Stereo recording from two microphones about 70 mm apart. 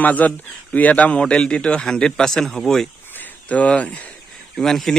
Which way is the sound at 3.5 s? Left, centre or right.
Left.